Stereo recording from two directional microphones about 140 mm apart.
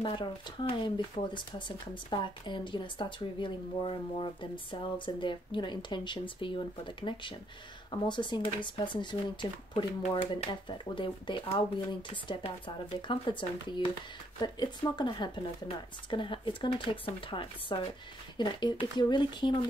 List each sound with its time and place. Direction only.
0.0 s speech: 35° left (ahead or behind)